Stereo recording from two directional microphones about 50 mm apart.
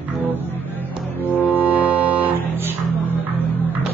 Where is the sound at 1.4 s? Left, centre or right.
Right.